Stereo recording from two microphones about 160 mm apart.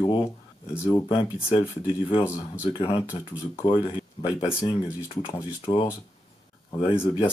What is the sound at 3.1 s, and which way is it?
Speech, 30° left (ahead or behind).